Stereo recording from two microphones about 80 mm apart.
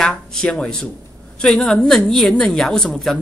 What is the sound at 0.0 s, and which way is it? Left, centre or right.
A man's voice, centre.